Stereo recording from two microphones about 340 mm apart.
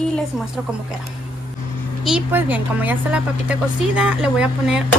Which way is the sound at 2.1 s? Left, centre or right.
Centre.